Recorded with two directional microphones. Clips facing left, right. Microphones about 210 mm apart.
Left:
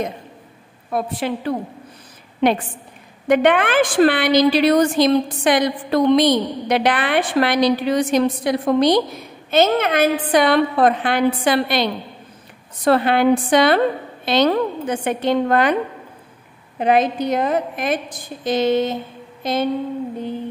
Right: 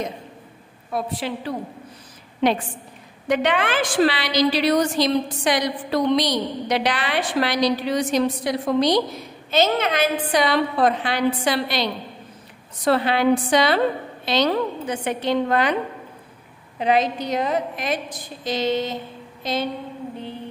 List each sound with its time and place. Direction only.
0.9 s a woman's voice: 55° left (ahead or behind)
3.3 s a woman's voice: 55° left (ahead or behind)